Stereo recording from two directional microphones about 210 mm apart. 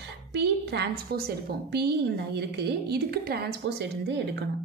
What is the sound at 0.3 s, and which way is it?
A woman's voice, 55° right (ahead or behind).